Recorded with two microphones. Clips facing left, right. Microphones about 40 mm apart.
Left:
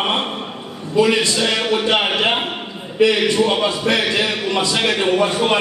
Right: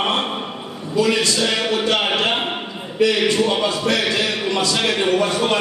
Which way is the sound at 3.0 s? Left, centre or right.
Left.